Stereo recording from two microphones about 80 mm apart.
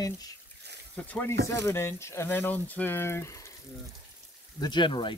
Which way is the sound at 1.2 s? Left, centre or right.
Left.